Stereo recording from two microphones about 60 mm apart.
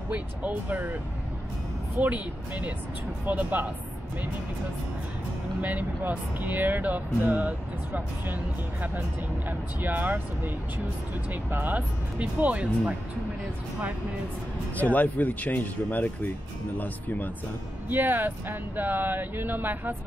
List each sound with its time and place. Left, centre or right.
0.1 s speech: right
2.0 s speech: right
5.6 s speech: right
9.5 s speech: right
11.5 s speech: right
14.8 s speech: left
17.8 s speech: right